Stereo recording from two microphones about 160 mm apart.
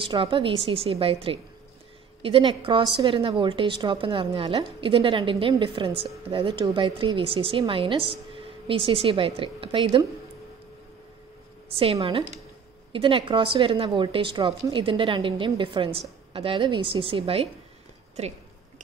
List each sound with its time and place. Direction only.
0.0 s a woman's voice: 30° right (ahead or behind)
11.7 s a woman's voice: 35° right (ahead or behind)